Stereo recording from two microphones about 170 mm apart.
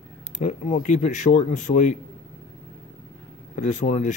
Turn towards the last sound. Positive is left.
turn(degrees=45)  # may be behind; listen again after turning